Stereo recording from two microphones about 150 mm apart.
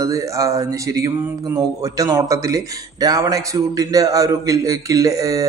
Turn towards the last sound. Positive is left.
turn(degrees=-20)  # may be behind; listen again after turning